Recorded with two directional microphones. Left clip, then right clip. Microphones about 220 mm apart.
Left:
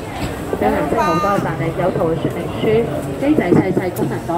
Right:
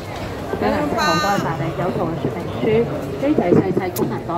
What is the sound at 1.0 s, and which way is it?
Speech, 50° right (ahead or behind).